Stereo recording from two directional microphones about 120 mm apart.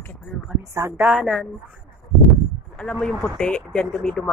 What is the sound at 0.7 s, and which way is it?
Speech, 20° right (ahead or behind).